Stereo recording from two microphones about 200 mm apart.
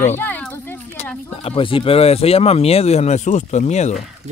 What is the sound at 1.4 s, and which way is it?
Speech, 25° left (ahead or behind).